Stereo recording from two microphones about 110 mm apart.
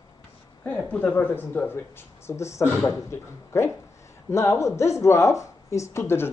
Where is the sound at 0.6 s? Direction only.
10° left (ahead or behind).